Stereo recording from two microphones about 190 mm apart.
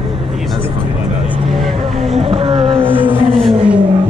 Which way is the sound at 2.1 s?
30° right (ahead or behind).